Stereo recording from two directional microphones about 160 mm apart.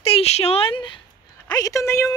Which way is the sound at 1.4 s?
20° left (ahead or behind).